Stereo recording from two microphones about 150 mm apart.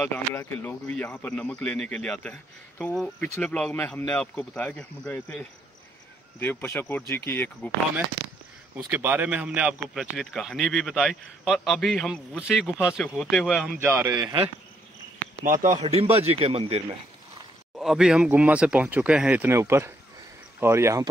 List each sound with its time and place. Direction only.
0.0 s speech: 15° left (ahead or behind)
8.7 s speech: 10° right (ahead or behind)
13.7 s speech: 15° right (ahead or behind)
15.4 s speech: 60° right (ahead or behind); by 16.8 s 40° right (ahead or behind)
17.7 s speech: 5° right (ahead or behind); by 21.1 s 20° right (ahead or behind)